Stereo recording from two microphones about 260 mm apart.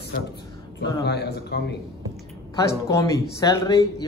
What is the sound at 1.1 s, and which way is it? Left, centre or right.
Speech, left.